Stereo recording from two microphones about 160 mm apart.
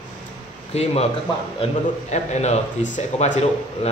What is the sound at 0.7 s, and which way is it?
A man's voice, 40° left (ahead or behind).